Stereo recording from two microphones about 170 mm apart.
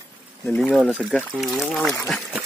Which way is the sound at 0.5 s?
5° left (ahead or behind).